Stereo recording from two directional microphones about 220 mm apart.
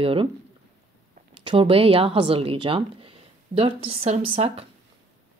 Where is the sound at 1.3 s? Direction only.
25° right (ahead or behind).